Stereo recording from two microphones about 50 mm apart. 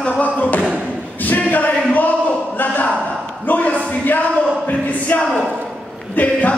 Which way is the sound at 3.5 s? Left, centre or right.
Left.